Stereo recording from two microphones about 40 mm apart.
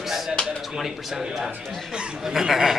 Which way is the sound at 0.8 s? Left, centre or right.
Centre.